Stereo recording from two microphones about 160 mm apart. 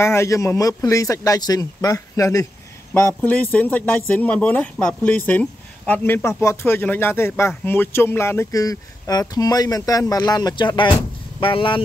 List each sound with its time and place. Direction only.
0.0 s speech: 15° left (ahead or behind); by 11.8 s 30° left (ahead or behind)